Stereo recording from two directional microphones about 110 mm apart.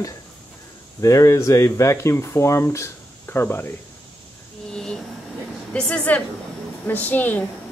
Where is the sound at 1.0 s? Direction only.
30° left (ahead or behind).